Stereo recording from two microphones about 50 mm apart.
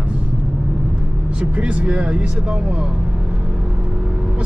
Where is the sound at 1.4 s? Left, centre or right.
Right.